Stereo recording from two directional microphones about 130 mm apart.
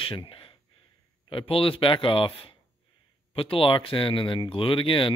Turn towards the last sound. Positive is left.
turn(degrees=40)  # may be behind; listen again after turning